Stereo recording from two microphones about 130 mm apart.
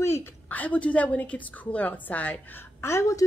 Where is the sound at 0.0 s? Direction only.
20° left (ahead or behind).